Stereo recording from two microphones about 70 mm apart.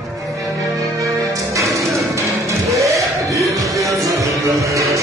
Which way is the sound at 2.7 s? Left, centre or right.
Right.